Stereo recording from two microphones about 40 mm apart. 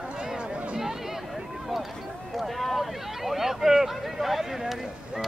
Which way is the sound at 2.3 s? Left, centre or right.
Centre.